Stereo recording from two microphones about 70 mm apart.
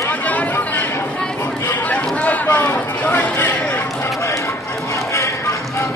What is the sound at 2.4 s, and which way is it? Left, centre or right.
Chatter, left.